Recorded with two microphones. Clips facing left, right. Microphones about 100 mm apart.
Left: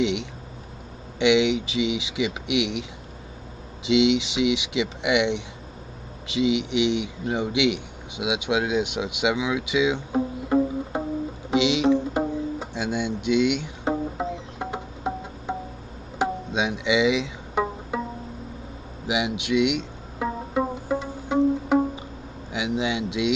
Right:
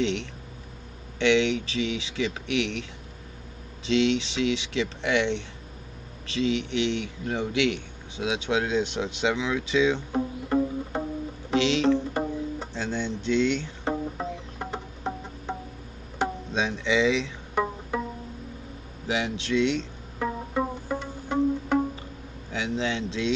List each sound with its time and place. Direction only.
0.0 s a man's voice: 15° left (ahead or behind)
11.5 s music: 15° left (ahead or behind)
19.0 s music: 15° left (ahead or behind)
22.5 s speech: 15° left (ahead or behind)